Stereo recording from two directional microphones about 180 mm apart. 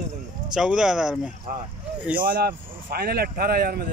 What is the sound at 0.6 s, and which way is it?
Speech, 5° right (ahead or behind).